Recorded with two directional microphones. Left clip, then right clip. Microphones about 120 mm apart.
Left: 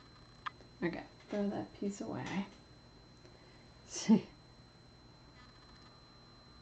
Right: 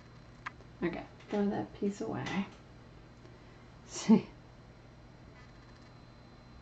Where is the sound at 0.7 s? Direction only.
50° left (ahead or behind).